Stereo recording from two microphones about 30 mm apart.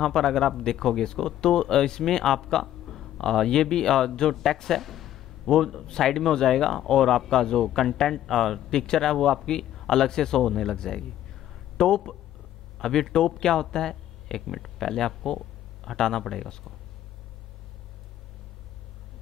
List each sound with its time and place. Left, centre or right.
0.0 s speech: centre
2.6 s a sound: centre
3.4 s speech: centre
4.8 s a sound: centre
5.5 s speech: centre
8.7 s a man's voice: centre
14.5 s speech: centre